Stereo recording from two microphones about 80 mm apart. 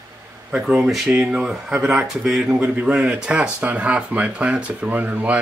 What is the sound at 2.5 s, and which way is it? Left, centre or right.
Speech, centre.